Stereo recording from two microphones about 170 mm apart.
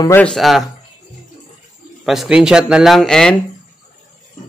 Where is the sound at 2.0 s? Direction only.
Centre (ahead or behind).